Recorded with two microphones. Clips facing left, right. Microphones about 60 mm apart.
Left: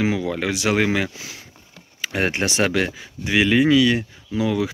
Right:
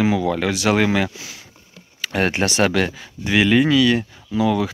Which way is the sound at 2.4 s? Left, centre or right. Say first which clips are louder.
Right 3 dB; centre.